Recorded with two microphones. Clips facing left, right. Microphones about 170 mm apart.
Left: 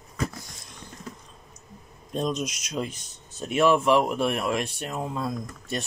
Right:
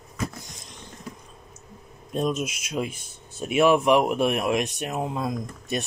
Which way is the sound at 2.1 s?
5° right (ahead or behind).